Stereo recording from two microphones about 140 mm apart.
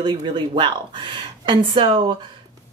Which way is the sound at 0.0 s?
35° right (ahead or behind).